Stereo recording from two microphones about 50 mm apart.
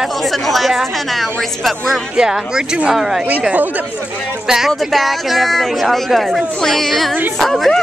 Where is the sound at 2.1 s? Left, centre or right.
Centre.